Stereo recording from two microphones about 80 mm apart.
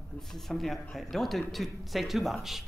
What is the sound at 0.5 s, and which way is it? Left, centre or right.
A man's voice, centre.